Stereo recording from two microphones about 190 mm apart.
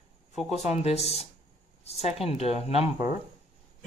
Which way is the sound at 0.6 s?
35° left (ahead or behind).